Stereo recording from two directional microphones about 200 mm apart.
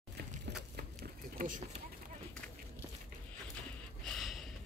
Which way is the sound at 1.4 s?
40° right (ahead or behind).